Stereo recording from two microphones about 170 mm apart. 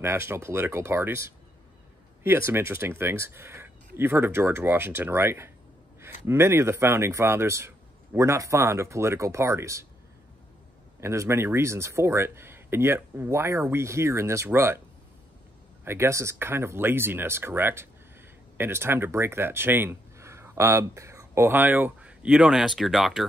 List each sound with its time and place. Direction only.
0.0 s speech: 15° right (ahead or behind)
11.0 s speech: 15° right (ahead or behind)
15.8 s speech: 15° right (ahead or behind)